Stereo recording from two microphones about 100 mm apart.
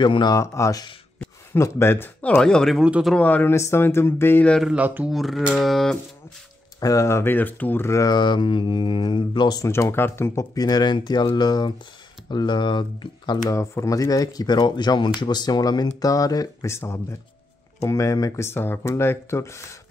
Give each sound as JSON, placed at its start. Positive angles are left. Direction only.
{"t": 0.0, "sound": "speech", "side_deg": 50}
{"t": 0.4, "sound": "speech", "side_deg": 35}
{"t": 2.3, "sound": "speech", "side_deg": 5}
{"t": 2.8, "sound": "speech", "side_deg": -5}
{"t": 3.2, "sound": "speech", "side_deg": 15}
{"t": 3.5, "sound": "speech", "side_deg": 25}
{"t": 4.6, "sound": "speech", "side_deg": -15}
{"t": 5.1, "sound": "speech", "side_deg": 0}
{"t": 6.8, "sound": "speech", "side_deg": 35}
{"t": 8.1, "sound": "speech", "side_deg": 50}
{"t": 9.6, "sound": "speech", "side_deg": 30}
{"t": 13.5, "sound": "speech", "side_deg": 30}